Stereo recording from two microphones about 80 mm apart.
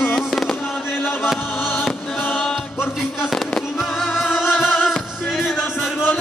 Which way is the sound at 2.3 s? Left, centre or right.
Centre.